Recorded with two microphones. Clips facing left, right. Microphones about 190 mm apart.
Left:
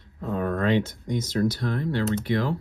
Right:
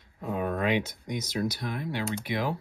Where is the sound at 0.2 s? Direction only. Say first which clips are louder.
Left 3 dB; 10° right (ahead or behind).